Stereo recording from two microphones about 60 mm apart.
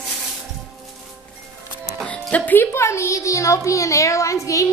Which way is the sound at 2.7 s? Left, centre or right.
Left.